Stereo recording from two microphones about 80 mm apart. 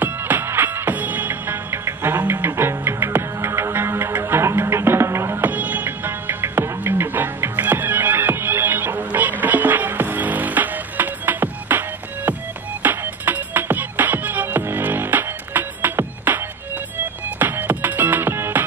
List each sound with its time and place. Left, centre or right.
0.0 s music: right
5.5 s music: right
12.8 s music: right